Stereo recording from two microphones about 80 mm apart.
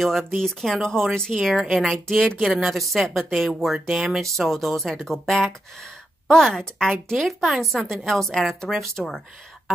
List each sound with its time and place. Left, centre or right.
0.0 s a woman's voice: centre